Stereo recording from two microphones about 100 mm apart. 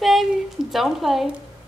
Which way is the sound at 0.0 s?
Centre (ahead or behind).